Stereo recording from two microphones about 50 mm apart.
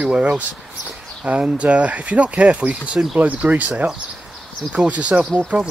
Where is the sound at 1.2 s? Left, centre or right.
Right.